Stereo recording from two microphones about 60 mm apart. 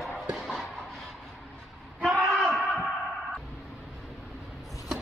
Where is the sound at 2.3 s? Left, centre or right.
Centre.